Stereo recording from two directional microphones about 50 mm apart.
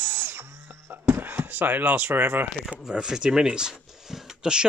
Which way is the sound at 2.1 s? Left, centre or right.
Right.